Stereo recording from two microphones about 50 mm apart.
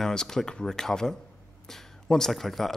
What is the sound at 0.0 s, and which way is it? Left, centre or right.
Speech, centre.